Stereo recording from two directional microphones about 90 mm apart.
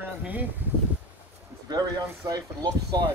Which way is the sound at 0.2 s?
20° right (ahead or behind).